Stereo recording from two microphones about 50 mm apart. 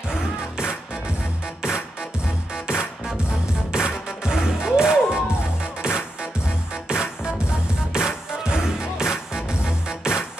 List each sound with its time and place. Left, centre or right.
0.1 s music: centre